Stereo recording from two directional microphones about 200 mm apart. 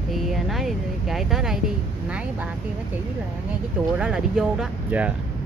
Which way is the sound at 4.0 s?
Centre (ahead or behind).